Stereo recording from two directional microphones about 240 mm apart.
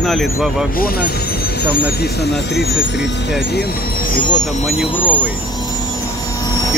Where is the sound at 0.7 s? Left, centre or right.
Left.